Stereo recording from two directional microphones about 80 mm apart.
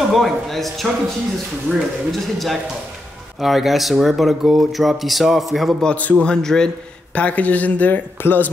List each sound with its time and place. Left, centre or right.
0.1 s speech: centre
1.7 s speech: centre
2.1 s speech: centre
5.9 s speech: centre
6.2 s a man's voice: centre; by 8.5 s left